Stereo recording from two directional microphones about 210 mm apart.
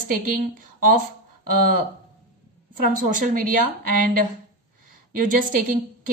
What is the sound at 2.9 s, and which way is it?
A woman's voice, 40° right (ahead or behind).